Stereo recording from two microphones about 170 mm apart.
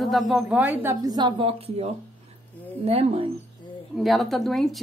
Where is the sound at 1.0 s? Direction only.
25° right (ahead or behind).